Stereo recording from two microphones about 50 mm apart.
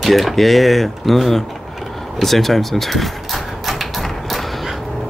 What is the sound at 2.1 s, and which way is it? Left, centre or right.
Speech, centre.